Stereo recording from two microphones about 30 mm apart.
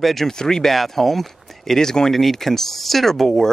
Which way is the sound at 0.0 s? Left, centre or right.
Centre.